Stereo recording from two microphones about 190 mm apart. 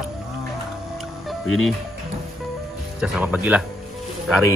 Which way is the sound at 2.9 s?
5° right (ahead or behind).